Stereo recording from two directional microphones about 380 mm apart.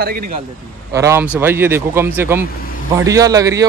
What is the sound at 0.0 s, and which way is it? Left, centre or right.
Speech, right.